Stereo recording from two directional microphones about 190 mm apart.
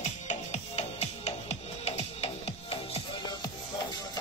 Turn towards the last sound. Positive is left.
turn(degrees=25)  # may be behind; listen again after turning